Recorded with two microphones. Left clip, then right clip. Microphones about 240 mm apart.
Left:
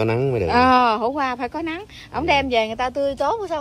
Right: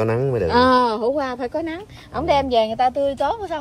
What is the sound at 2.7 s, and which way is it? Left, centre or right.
Speech, centre.